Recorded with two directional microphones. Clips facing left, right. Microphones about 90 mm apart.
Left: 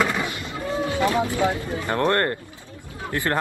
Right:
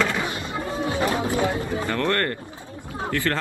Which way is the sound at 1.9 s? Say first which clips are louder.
Left 4 dB; 25° left (ahead or behind).